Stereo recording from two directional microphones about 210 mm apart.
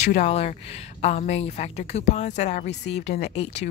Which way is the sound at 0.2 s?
30° left (ahead or behind).